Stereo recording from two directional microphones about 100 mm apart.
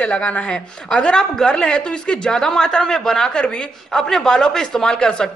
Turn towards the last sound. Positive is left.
turn(degrees=5)  # may be behind; listen again after turning